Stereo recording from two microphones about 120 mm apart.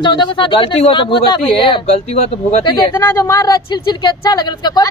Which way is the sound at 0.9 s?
40° left (ahead or behind).